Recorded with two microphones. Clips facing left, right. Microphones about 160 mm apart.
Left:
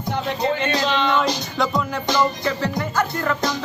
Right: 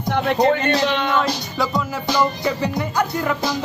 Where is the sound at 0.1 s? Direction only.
65° right (ahead or behind).